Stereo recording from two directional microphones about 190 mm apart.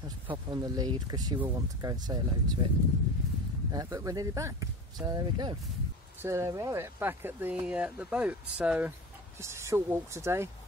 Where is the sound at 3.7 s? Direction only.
15° right (ahead or behind).